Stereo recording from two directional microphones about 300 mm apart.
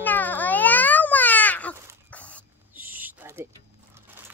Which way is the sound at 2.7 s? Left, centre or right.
Centre.